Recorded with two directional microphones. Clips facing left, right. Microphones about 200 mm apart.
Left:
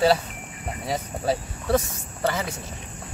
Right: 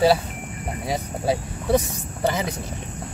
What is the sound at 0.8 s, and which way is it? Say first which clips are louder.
Speech: right 1 dB; 10° right (ahead or behind).